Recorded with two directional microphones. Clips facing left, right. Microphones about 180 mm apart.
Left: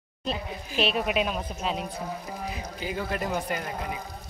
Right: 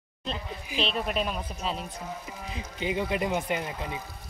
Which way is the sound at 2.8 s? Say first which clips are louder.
Right 3 dB; 20° right (ahead or behind).